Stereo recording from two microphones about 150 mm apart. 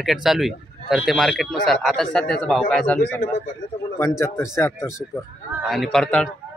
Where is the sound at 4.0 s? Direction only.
20° left (ahead or behind).